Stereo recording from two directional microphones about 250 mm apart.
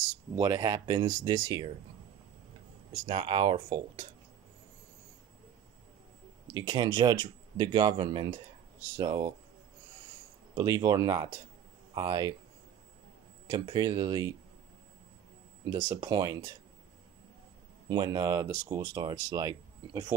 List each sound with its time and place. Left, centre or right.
0.1 s speech: centre
2.9 s speech: right
6.5 s speech: centre
10.5 s speech: centre
13.5 s speech: centre
15.6 s speech: centre
17.8 s speech: centre